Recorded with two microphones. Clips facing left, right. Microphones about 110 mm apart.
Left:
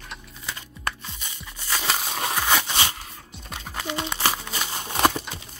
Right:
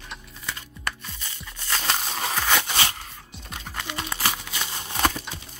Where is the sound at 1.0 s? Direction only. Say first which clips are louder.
Left 1 dB; 20° left (ahead or behind).